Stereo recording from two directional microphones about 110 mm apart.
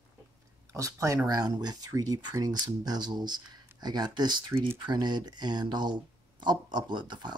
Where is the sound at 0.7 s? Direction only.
30° right (ahead or behind).